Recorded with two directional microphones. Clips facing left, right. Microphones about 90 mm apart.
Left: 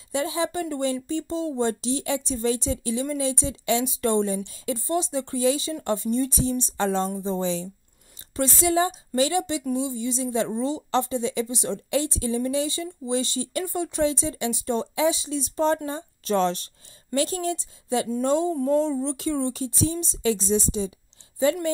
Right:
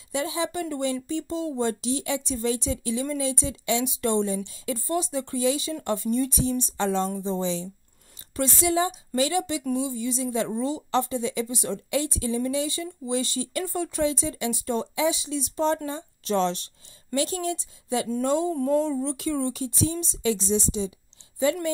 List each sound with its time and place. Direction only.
0.1 s a woman's voice: 35° left (ahead or behind)
4.6 s a woman's voice: 25° left (ahead or behind); by 20.9 s 40° left (ahead or behind)